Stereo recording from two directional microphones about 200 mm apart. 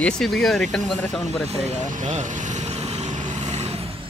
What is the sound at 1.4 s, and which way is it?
Vehicle, 35° right (ahead or behind).